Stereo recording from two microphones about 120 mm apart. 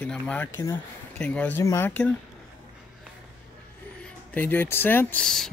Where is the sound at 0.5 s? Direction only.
25° left (ahead or behind).